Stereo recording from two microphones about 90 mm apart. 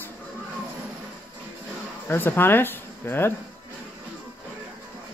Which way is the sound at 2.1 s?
25° left (ahead or behind).